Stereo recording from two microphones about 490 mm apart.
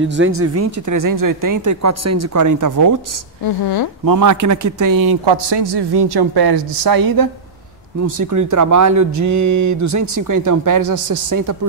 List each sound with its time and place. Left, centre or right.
0.0 s speech: right
3.4 s a woman's voice: left
4.0 s a man's voice: right